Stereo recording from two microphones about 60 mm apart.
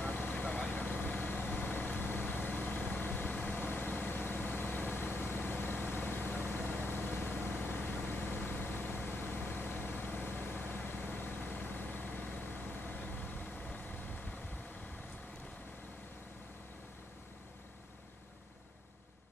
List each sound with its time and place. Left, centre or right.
0.0 s vehicle: left